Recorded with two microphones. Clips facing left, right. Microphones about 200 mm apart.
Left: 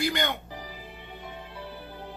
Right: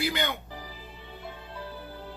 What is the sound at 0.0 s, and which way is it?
Speech, 5° right (ahead or behind).